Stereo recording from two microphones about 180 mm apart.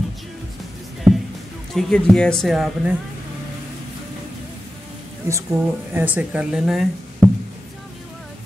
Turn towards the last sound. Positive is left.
turn(degrees=0)  # may be behind; listen again after turning